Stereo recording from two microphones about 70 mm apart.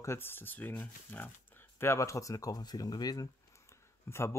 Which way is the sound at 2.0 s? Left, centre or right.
Left.